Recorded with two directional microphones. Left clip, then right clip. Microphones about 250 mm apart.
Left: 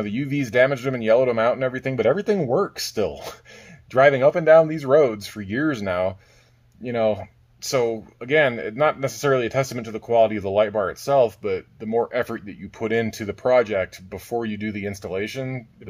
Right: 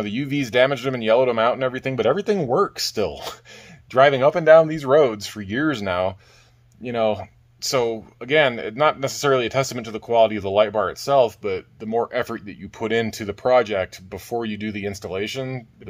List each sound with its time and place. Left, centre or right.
0.0 s speech: right